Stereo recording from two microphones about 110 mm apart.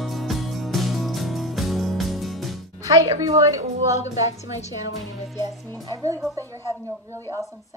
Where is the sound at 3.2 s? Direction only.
30° right (ahead or behind).